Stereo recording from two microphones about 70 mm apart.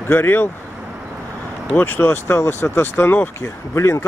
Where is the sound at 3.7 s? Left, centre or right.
Left.